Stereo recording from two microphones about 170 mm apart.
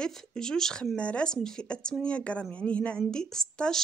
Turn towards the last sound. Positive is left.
turn(degrees=5)  # may be behind; listen again after turning